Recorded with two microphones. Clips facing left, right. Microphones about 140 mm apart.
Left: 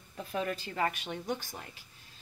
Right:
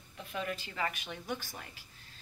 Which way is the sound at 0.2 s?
35° left (ahead or behind).